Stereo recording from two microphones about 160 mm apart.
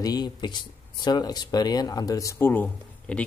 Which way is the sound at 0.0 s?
25° left (ahead or behind).